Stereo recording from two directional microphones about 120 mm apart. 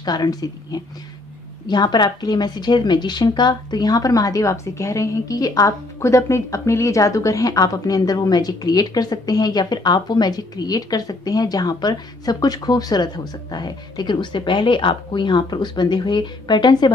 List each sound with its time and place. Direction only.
0.0 s a woman's voice: 35° left (ahead or behind)